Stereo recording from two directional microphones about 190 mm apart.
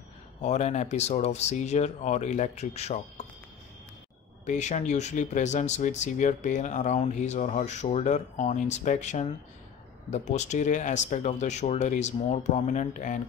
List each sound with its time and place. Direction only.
0.4 s speech: 35° left (ahead or behind)
4.5 s speech: 35° left (ahead or behind)